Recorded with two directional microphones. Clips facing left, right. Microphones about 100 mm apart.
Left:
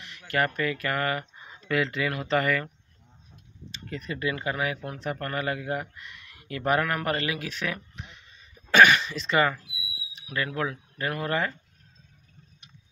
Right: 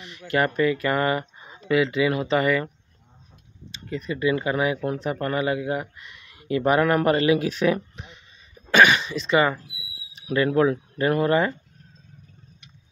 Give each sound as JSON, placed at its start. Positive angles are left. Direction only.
{"t": 0.0, "sound": "speech", "side_deg": -20}
{"t": 3.9, "sound": "speech", "side_deg": -10}
{"t": 8.6, "sound": "cough", "side_deg": -15}
{"t": 9.0, "sound": "speech", "side_deg": 0}
{"t": 9.6, "sound": "a sound", "side_deg": -35}
{"t": 10.3, "sound": "speech", "side_deg": -25}